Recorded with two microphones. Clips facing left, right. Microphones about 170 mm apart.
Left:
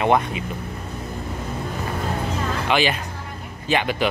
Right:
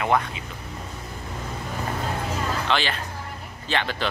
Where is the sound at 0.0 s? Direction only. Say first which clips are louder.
Left 4 dB; 20° left (ahead or behind).